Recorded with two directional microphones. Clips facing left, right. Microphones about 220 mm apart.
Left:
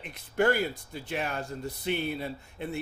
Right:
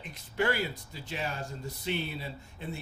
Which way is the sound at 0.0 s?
55° left (ahead or behind).